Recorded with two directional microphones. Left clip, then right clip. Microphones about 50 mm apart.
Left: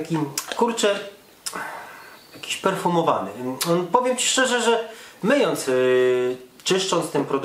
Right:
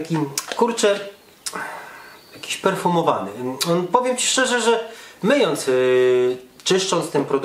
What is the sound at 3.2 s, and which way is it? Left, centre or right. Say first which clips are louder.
Speech: right 2 dB; centre.